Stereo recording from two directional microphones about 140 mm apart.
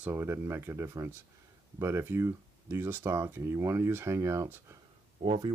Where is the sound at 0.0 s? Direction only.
15° right (ahead or behind).